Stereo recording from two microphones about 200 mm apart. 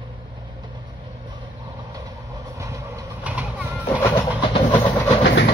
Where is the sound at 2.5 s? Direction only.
15° right (ahead or behind).